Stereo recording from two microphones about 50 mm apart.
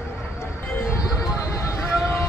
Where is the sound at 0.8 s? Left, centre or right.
Left.